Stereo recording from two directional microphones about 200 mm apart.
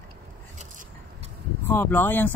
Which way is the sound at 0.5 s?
40° right (ahead or behind).